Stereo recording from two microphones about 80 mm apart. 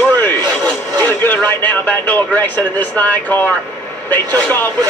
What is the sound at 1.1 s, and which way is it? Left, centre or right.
A man's voice, left.